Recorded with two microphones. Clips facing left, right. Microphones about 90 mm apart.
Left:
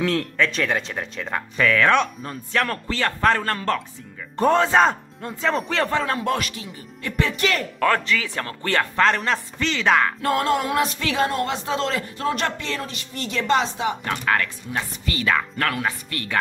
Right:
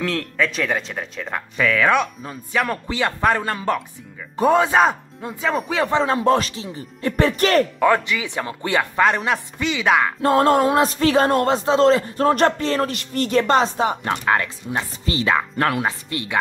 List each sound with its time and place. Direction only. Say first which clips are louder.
0.0 s speech: left 1 dB; 5° left (ahead or behind)
5.9 s a man's voice: right 5 dB; 20° right (ahead or behind); by 7.6 s 40° right (ahead or behind)
7.8 s speech: right 3 dB; 15° right (ahead or behind)
10.4 s a sound: right 8 dB; 40° right (ahead or behind)
10.7 s a man's voice: right 6 dB; 35° right (ahead or behind)
12.8 s speech: right 8 dB; 55° right (ahead or behind); by 16.3 s 20° right (ahead or behind)